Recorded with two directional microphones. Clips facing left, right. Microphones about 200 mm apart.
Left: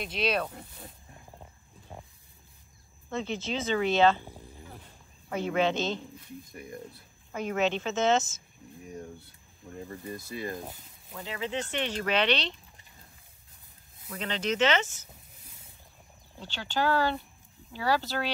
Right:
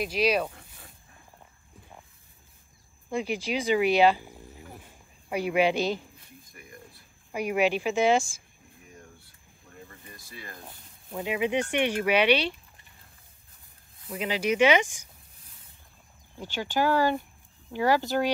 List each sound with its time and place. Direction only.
0.0 s speech: 5° right (ahead or behind)
0.6 s wild animals: 20° left (ahead or behind)
3.4 s a sound: 15° right (ahead or behind)
6.5 s speech: 25° left (ahead or behind)
7.3 s speech: 10° right (ahead or behind)
9.8 s speech: 25° left (ahead or behind)
11.1 s speech: 15° right (ahead or behind)
14.0 s speech: 10° right (ahead or behind)
16.3 s speech: 15° right (ahead or behind)